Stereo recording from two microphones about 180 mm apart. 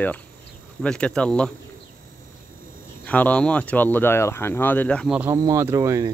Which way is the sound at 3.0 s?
10° left (ahead or behind).